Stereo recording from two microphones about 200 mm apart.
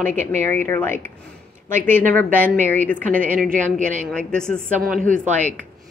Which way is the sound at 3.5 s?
40° right (ahead or behind).